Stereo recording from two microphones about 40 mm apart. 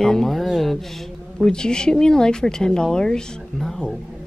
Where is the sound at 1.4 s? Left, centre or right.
Centre.